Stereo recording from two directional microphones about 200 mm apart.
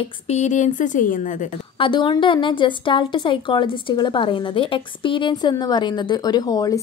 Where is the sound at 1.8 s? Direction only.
25° left (ahead or behind).